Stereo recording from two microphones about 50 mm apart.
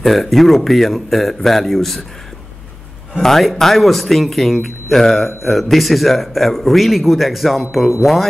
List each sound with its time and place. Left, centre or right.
0.0 s a man's voice: centre
3.2 s a man's voice: centre